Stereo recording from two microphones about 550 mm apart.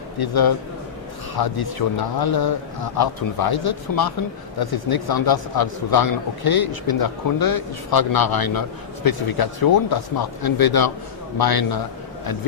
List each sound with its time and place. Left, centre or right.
0.2 s a man's voice: left